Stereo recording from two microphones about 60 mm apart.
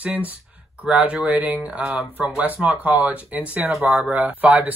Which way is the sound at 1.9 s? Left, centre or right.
Right.